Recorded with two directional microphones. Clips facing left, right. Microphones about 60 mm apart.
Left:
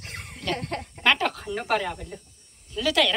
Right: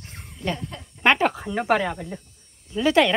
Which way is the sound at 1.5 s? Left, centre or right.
Centre.